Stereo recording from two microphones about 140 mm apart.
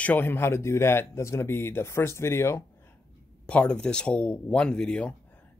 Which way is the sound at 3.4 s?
10° left (ahead or behind).